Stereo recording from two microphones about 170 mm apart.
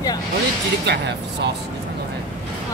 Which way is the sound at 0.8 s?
80° right.